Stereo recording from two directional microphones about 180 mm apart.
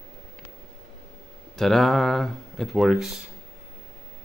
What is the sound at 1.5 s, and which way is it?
Speech, centre (ahead or behind).